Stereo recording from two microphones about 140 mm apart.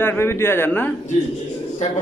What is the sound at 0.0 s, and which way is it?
Speech, 15° left (ahead or behind).